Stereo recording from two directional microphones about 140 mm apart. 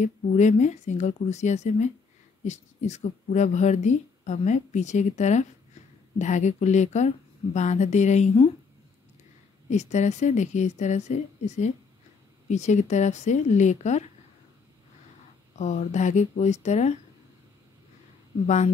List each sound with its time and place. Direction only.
0.0 s speech: 55° left (ahead or behind)
9.7 s speech: 55° left (ahead or behind)
15.6 s speech: 55° left (ahead or behind)